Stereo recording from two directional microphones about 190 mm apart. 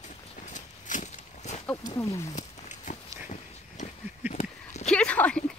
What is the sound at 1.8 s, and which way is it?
Speech, 20° left (ahead or behind).